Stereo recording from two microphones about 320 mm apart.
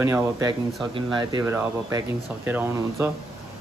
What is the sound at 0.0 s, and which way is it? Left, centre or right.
Speech, centre.